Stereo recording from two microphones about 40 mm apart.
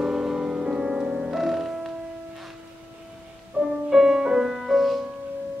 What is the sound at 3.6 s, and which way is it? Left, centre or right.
Music, right.